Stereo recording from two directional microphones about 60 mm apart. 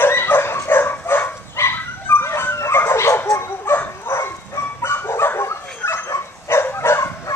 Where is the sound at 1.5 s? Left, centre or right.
Left.